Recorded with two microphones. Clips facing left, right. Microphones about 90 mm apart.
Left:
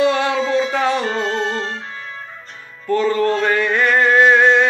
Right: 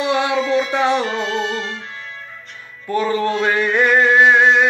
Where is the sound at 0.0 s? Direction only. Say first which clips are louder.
Left 2 dB; 15° right (ahead or behind).